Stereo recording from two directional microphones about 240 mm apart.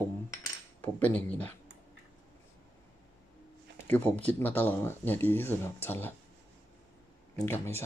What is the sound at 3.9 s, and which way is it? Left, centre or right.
Speech, centre.